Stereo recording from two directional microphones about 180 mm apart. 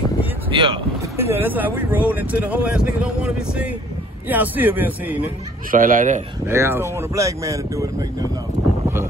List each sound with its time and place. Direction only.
0.5 s speech: 30° right (ahead or behind)
1.1 s speech: 10° right (ahead or behind)
5.7 s speech: 45° right (ahead or behind)
6.4 s speech: 10° right (ahead or behind)